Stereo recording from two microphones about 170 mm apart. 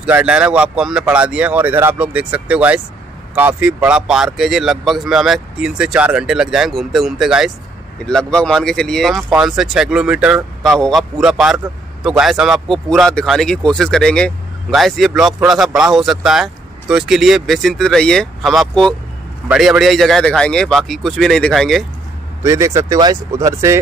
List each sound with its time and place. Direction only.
0.0 s a man's voice: 5° right (ahead or behind)
22.4 s speech: 15° right (ahead or behind)